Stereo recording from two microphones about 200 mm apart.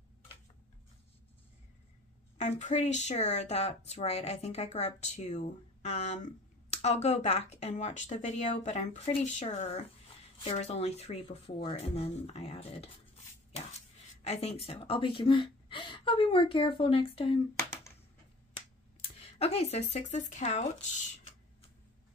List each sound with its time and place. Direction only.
2.3 s a woman's voice: 35° left (ahead or behind)
17.6 s a sound: 10° left (ahead or behind)
18.9 s speech: 30° left (ahead or behind)